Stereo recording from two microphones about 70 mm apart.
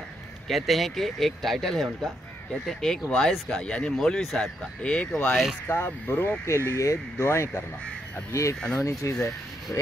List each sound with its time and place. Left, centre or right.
0.5 s speech: centre
4.8 s speech: centre
5.7 s speech: left
6.4 s speech: left